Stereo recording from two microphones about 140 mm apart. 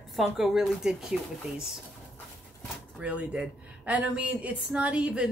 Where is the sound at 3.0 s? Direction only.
10° right (ahead or behind).